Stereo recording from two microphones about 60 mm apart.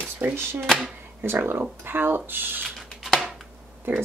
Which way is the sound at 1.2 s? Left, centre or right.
Right.